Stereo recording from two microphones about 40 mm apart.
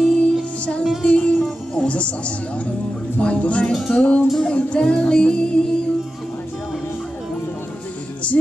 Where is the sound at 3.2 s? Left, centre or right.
Left.